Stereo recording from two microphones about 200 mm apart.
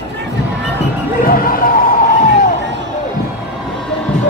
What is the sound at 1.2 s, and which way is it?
Basketball bounce, 45° left (ahead or behind).